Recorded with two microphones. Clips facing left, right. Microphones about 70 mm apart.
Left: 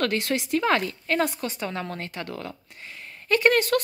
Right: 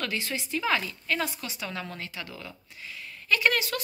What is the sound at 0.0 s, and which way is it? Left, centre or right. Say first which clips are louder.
A woman's voice: left 7 dB; left.